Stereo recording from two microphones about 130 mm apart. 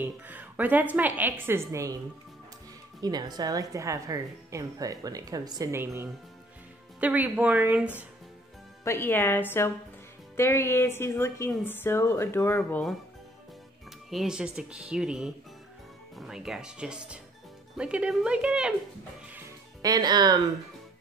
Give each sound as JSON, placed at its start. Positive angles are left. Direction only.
{"t": 0.0, "sound": "a woman's voice", "side_deg": -15}
{"t": 3.0, "sound": "speech", "side_deg": -30}
{"t": 7.0, "sound": "a woman's voice", "side_deg": -10}
{"t": 8.8, "sound": "a woman's voice", "side_deg": 20}
{"t": 14.1, "sound": "a woman's voice", "side_deg": -5}
{"t": 19.8, "sound": "speech", "side_deg": -30}